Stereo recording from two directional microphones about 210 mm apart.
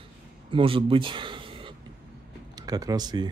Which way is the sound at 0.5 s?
25° right (ahead or behind).